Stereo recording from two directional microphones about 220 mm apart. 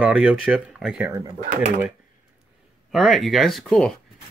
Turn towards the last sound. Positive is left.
turn(degrees=5)  # may be behind; listen again after turning